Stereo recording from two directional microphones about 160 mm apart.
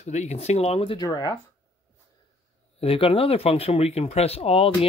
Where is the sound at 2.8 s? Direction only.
35° left (ahead or behind).